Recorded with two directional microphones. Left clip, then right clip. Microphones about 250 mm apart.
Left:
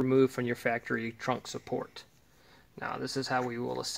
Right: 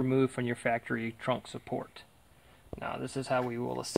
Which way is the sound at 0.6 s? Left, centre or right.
Right.